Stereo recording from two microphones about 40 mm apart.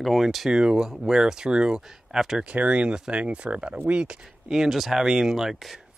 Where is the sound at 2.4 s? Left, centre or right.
Right.